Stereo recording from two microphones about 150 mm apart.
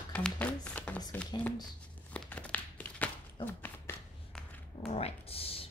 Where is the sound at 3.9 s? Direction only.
15° left (ahead or behind).